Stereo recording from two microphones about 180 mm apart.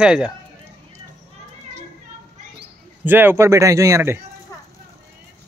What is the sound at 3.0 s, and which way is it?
Speech, 10° right (ahead or behind).